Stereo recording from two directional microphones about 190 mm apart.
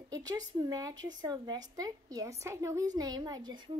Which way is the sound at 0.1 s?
20° right (ahead or behind).